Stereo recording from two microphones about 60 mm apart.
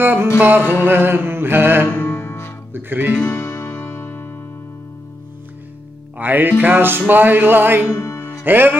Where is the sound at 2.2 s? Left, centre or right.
Left.